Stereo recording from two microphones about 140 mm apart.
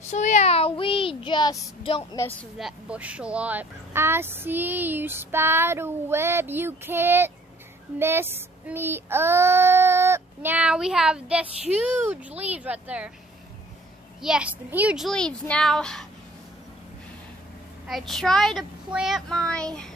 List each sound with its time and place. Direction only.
0.0 s a child's voice: 55° left (ahead or behind); by 2.0 s 30° left (ahead or behind)
2.2 s speech: 20° left (ahead or behind)
2.5 s speech: 5° right (ahead or behind)
14.2 s speech: 5° right (ahead or behind)
15.0 s a child's voice: 5° left (ahead or behind)
17.8 s a child's voice: centre (ahead or behind)